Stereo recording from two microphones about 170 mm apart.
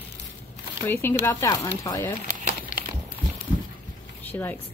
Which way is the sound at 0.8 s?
15° left (ahead or behind).